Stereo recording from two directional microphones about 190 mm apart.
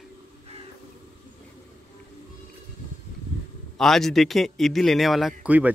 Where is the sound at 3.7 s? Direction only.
Centre (ahead or behind).